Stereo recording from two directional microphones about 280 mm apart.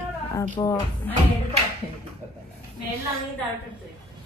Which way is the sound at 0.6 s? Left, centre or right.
Centre.